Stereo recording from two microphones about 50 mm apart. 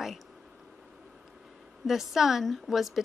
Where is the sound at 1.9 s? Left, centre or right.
Centre.